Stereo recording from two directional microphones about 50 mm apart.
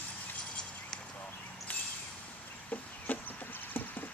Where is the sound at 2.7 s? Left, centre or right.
Left.